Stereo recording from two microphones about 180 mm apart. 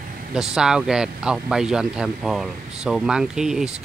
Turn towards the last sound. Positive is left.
turn(degrees=-5)  # may be behind; listen again after turning